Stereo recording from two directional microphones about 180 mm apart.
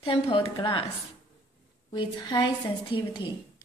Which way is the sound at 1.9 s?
25° left (ahead or behind).